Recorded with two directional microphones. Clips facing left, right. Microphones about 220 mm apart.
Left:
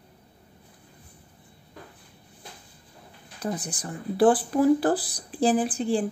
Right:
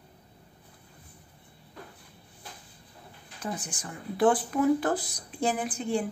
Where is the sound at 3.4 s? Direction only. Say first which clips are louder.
Left 5 dB; 35° left (ahead or behind).